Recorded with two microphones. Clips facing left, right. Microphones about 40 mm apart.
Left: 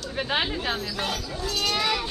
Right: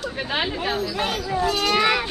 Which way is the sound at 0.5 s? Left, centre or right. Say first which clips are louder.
Right 4 dB; centre.